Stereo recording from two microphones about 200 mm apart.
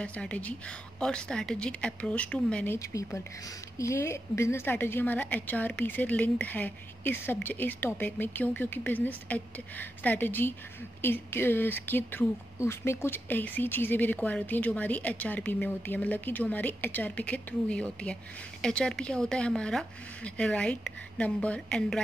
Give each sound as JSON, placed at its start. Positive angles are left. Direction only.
{"t": 0.0, "sound": "a woman's voice", "side_deg": 5}